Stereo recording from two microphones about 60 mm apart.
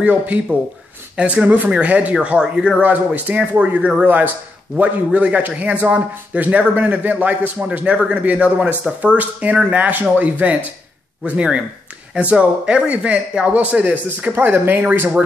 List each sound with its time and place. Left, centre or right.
0.0 s a man's voice: right
2.8 s a man's voice: right